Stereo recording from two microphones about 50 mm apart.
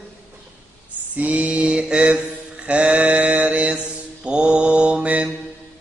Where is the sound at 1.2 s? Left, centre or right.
Right.